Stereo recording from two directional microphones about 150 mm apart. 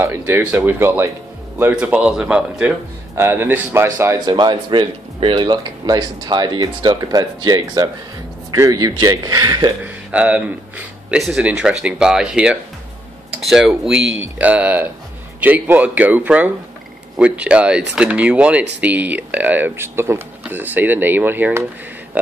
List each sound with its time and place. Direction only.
0.0 s speech: 15° right (ahead or behind)
4.3 s speech: 30° right (ahead or behind)
9.8 s speech: 10° right (ahead or behind)